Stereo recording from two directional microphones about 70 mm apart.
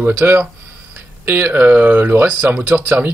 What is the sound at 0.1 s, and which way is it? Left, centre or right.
Speech, right.